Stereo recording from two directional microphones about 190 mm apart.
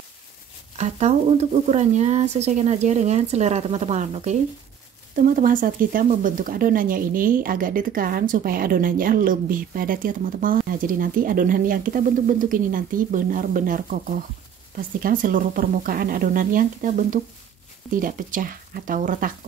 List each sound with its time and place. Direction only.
0.7 s speech: 35° right (ahead or behind)